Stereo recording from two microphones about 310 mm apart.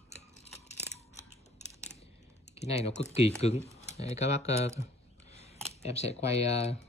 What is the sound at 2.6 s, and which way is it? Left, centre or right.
Speech, left.